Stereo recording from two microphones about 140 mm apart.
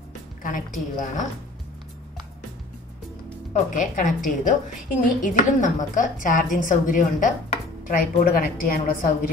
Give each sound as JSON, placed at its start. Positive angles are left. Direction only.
{"t": 0.4, "sound": "a woman's voice", "side_deg": 70}
{"t": 3.7, "sound": "a woman's voice", "side_deg": 65}